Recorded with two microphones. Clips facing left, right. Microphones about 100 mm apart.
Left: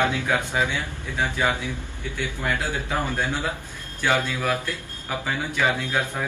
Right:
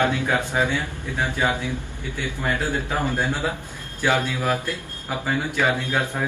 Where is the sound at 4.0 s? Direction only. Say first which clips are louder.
Right 1 dB; 15° right (ahead or behind).